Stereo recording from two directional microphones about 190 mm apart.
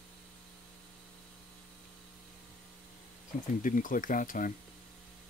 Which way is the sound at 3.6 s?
45° left (ahead or behind).